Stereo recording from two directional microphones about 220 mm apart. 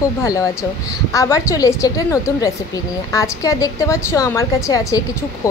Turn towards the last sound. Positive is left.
turn(degrees=15)  # may be behind; listen again after turning